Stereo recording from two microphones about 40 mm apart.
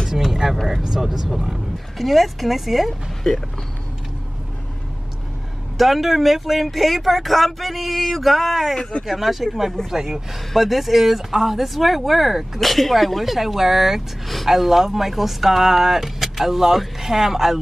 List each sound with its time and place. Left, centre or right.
0.3 s vehicle: centre
0.9 s speech: centre
2.0 s speech: centre
3.3 s speech: centre
5.8 s speech: centre